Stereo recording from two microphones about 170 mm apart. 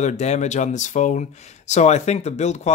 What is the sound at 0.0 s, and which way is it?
Speech, 45° left (ahead or behind).